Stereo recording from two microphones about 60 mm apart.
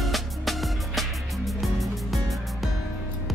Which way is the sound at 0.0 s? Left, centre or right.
Centre.